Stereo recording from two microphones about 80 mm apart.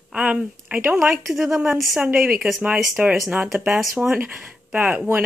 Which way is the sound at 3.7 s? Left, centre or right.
Centre.